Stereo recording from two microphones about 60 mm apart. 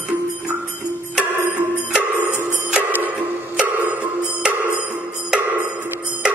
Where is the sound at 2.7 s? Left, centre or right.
Right.